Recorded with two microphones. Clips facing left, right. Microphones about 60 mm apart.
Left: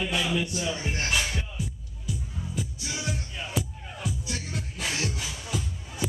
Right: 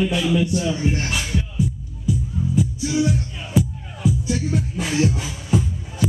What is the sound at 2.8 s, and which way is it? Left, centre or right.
Music, centre.